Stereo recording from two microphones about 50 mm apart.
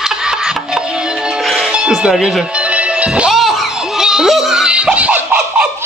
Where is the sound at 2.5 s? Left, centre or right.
Right.